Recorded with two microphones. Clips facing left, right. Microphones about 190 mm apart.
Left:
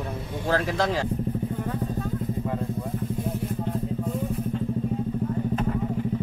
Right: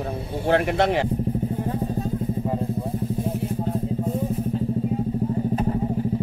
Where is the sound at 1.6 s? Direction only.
30° right (ahead or behind).